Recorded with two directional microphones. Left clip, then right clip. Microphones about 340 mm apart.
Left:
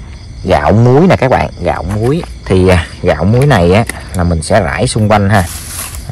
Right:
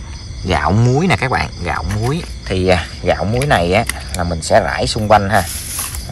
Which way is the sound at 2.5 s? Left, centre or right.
Centre.